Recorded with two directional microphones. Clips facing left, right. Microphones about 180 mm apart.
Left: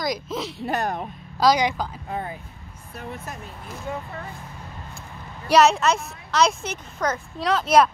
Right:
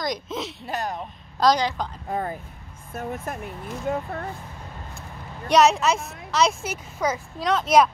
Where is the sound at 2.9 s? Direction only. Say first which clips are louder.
Right 5 dB; 50° right (ahead or behind).